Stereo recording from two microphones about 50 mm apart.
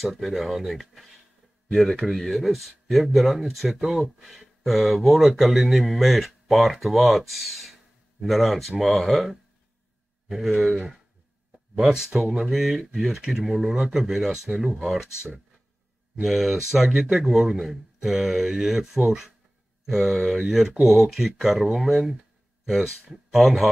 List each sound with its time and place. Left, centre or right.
0.0 s speech: centre
17.0 s speech: centre